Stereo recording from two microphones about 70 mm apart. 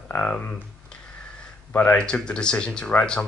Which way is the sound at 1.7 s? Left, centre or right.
Left.